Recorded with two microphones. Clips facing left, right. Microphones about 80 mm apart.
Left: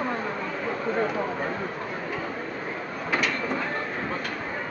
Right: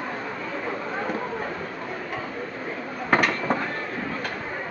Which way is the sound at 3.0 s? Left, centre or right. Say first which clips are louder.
Right 5 dB; right.